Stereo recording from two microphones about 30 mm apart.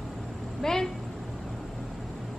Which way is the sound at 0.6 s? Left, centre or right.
Centre.